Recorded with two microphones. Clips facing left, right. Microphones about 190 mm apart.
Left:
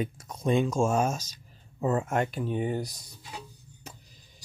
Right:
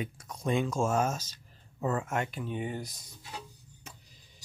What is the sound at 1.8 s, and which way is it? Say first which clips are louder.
Speech: left 4 dB; 25° left (ahead or behind).